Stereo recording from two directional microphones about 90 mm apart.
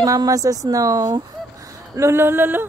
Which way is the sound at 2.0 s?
30° right (ahead or behind).